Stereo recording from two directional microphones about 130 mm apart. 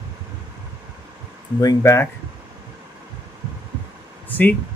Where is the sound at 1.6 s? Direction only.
20° left (ahead or behind).